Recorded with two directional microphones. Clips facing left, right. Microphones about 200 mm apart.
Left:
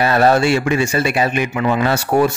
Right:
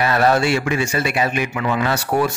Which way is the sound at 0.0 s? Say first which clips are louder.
Left 3 dB; 30° left (ahead or behind).